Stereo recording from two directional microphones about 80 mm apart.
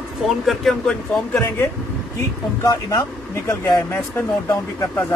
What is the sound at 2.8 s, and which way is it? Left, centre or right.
Speech, left.